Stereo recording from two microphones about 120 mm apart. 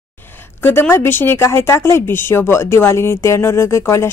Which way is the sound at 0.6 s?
20° left (ahead or behind).